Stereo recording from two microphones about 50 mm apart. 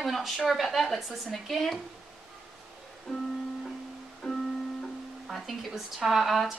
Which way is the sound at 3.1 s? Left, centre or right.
Centre.